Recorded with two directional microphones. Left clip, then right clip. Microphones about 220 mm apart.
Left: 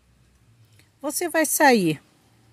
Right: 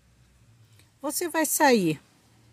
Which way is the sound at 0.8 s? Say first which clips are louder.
Left 3 dB; 10° left (ahead or behind).